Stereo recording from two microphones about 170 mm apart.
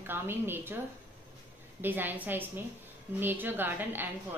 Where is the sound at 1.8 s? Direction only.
10° right (ahead or behind).